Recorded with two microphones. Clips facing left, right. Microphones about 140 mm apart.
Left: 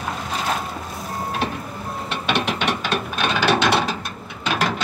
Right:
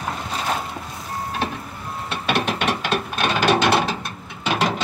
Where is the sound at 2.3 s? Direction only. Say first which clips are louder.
Right 1 dB; 10° right (ahead or behind).